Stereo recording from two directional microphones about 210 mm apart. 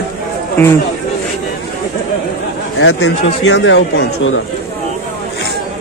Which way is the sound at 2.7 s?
60° left (ahead or behind).